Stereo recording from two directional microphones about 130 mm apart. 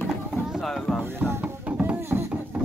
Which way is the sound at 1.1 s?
20° right (ahead or behind).